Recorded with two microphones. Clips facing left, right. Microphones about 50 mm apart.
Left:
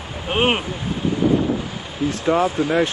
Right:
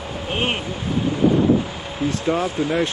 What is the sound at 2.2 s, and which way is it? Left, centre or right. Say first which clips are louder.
Speech: left 4 dB; left.